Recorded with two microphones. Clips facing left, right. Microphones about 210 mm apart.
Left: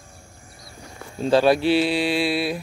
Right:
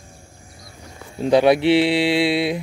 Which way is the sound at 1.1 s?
15° right (ahead or behind).